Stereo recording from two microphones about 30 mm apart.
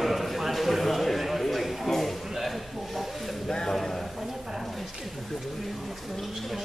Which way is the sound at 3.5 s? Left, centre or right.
Left.